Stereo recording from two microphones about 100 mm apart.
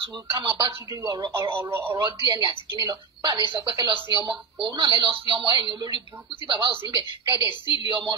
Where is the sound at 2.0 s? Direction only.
50° right (ahead or behind).